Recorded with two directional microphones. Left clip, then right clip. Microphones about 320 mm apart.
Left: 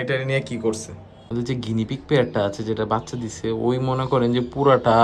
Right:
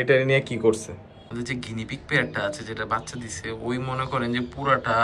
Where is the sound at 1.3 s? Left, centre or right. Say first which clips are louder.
Left 5 dB; centre.